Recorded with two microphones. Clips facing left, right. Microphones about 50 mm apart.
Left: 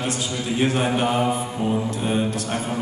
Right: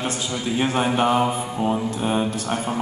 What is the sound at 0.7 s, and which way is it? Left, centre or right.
Mantra, right.